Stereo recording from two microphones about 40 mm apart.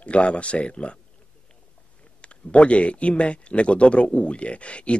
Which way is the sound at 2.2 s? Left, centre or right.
Left.